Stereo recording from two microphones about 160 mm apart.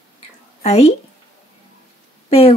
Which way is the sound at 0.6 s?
40° left (ahead or behind).